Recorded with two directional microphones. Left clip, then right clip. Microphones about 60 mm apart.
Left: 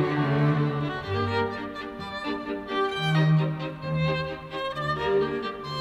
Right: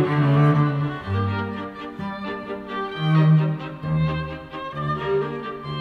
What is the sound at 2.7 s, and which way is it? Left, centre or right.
Music, left.